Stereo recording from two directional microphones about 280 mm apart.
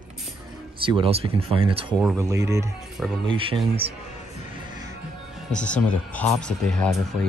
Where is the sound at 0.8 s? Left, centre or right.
Centre.